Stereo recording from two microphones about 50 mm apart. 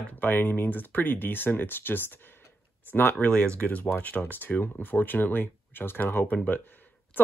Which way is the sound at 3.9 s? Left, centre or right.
Left.